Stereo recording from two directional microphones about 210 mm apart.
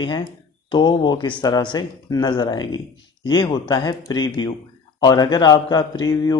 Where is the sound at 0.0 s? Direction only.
20° left (ahead or behind).